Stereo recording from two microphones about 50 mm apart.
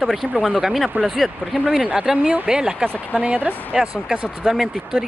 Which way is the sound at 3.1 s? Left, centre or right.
Right.